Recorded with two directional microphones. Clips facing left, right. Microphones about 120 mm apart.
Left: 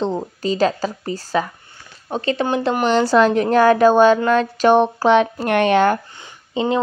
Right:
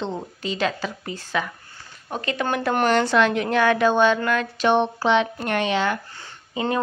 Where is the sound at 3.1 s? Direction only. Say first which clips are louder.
Left 6 dB; 40° left (ahead or behind).